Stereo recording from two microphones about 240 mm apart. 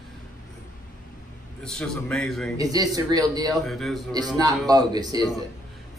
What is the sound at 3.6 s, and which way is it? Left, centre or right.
Speech, centre.